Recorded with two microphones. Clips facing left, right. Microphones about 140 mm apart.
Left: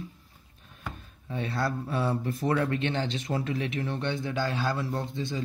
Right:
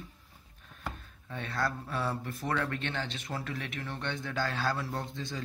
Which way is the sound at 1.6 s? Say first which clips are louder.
Left 3 dB; 20° left (ahead or behind).